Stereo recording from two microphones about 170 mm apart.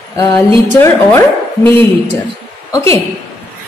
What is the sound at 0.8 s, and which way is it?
A woman's voice, 15° left (ahead or behind).